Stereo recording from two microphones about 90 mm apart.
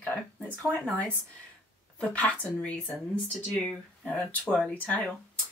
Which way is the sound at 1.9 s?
15° left (ahead or behind).